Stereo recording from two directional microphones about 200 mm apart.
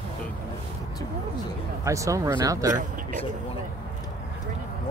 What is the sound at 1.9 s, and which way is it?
Speech, 15° right (ahead or behind).